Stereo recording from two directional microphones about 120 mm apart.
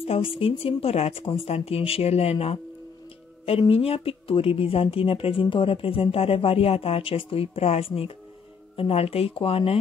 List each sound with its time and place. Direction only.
0.0 s speech: 50° left (ahead or behind)